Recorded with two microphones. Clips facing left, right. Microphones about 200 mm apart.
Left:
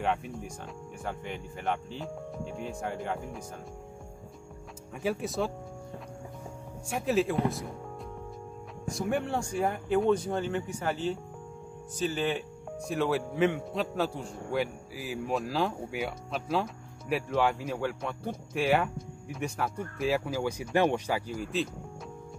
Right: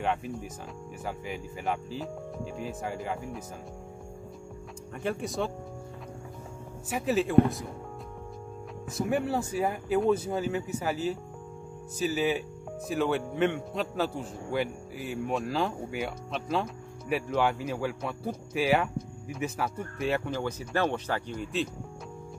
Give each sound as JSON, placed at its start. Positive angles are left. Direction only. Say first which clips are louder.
{"t": 0.0, "sound": "speech", "louder": "even", "side_deg": 0}
{"t": 4.9, "sound": "speech", "louder": "left 1 dB", "side_deg": 0}
{"t": 6.9, "sound": "speech", "louder": "even", "side_deg": 0}
{"t": 8.8, "sound": "speech", "louder": "right 2 dB", "side_deg": 0}